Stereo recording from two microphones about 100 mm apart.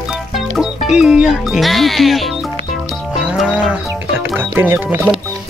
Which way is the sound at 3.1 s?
Centre (ahead or behind).